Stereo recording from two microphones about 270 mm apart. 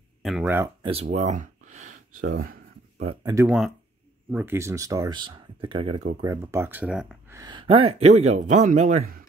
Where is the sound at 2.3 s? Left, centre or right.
Right.